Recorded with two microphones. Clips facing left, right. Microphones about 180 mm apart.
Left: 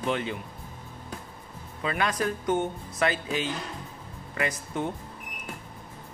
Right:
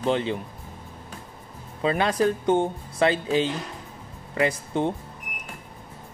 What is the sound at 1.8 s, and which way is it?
Speech, 30° right (ahead or behind).